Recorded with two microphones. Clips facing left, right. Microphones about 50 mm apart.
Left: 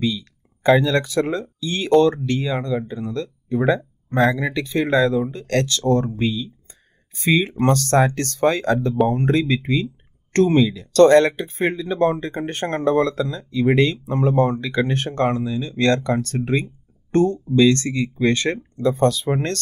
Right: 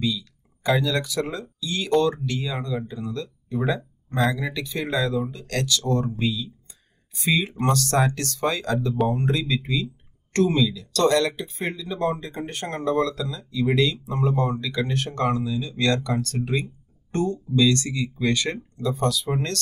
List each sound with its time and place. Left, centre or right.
0.0 s speech: left